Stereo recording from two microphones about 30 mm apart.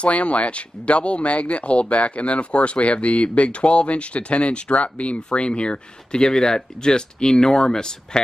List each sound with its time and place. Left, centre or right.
0.0 s speech: left